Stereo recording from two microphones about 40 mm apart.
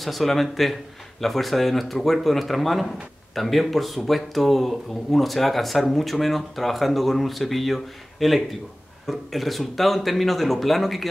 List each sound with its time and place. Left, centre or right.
0.0 s speech: centre